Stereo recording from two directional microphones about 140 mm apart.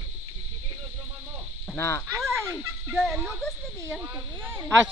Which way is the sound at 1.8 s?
20° left (ahead or behind).